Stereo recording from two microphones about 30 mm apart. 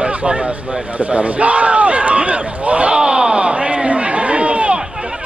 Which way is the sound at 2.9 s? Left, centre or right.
Right.